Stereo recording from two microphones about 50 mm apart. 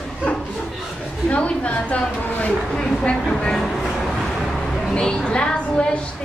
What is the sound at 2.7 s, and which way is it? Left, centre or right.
A woman's voice, centre.